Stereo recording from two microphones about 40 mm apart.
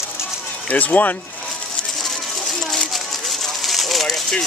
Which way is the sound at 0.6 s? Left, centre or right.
Left.